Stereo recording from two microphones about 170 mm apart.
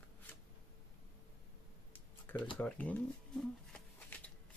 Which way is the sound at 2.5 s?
10° left (ahead or behind).